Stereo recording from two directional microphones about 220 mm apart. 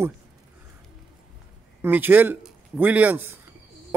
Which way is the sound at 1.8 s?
10° right (ahead or behind).